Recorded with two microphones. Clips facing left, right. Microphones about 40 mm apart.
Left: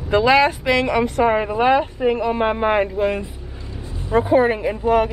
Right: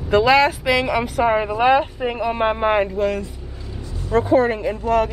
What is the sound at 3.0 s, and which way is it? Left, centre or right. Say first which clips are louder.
Speech: left 1 dB; left.